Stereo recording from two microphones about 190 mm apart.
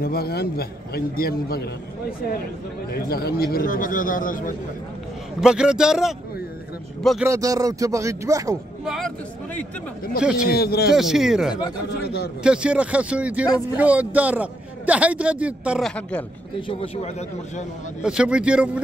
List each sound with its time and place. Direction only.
0.0 s a man's voice: 55° left (ahead or behind)
2.9 s speech: 55° left (ahead or behind)
5.4 s a man's voice: 5° right (ahead or behind)
7.2 s a man's voice: 20° right (ahead or behind)
8.8 s speech: centre (ahead or behind)
10.5 s a man's voice: 55° left (ahead or behind)
11.0 s a man's voice: centre (ahead or behind)
16.6 s speech: 30° left (ahead or behind)
18.0 s speech: 5° right (ahead or behind)